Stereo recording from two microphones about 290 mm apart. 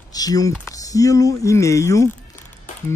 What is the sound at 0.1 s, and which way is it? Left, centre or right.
Speech, centre.